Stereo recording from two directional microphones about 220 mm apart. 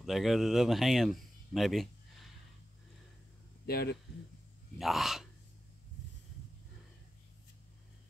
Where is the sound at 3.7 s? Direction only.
45° left (ahead or behind).